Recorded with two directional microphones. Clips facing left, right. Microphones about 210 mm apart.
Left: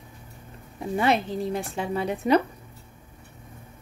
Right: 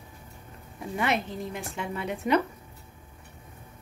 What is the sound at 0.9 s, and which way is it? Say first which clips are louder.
Speech: left 5 dB; 35° left (ahead or behind).